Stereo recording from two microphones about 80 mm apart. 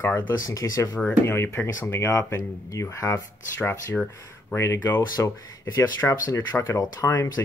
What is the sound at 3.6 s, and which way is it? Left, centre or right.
Speech, left.